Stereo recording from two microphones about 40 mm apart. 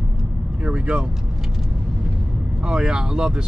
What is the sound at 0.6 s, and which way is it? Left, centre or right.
Speech, right.